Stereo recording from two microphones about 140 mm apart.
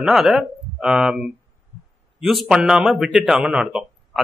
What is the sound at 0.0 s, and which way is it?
A man's voice, centre (ahead or behind).